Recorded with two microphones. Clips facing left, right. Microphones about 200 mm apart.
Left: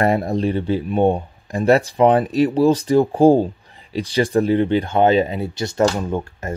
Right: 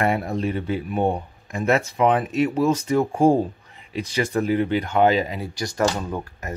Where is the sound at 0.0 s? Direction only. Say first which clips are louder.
Left 4 dB; 35° left (ahead or behind).